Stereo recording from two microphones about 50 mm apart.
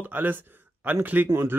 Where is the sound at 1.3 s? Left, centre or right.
Right.